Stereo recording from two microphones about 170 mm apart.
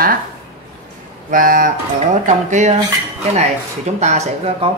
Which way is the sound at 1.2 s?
55° right (ahead or behind).